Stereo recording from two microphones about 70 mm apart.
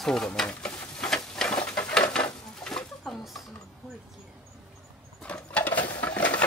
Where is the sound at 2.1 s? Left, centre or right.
Centre.